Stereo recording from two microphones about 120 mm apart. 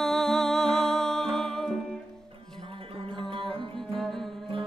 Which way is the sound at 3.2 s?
50° right (ahead or behind).